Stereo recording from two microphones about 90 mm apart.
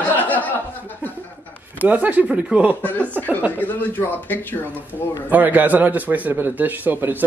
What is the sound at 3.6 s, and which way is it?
Speech, 20° left (ahead or behind).